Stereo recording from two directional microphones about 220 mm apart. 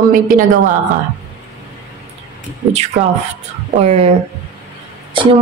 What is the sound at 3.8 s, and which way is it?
Speech, 25° right (ahead or behind).